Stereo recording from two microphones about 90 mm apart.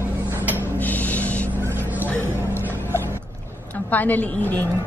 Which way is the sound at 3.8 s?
20° left (ahead or behind).